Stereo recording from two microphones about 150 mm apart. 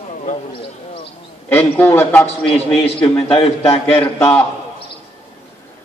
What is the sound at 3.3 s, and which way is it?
Speech, 40° left (ahead or behind).